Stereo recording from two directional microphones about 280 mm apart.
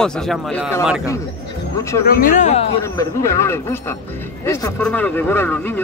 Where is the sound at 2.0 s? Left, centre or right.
Left.